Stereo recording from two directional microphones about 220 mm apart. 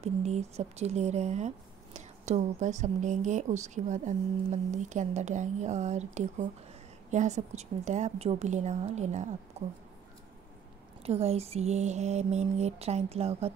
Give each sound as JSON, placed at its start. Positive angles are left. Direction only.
{"t": 0.0, "sound": "a woman's voice", "side_deg": -30}
{"t": 11.0, "sound": "speech", "side_deg": -30}